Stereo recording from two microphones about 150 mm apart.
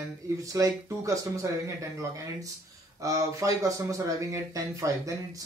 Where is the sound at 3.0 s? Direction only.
20° right (ahead or behind).